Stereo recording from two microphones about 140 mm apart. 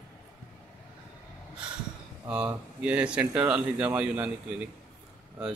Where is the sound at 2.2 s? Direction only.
10° right (ahead or behind).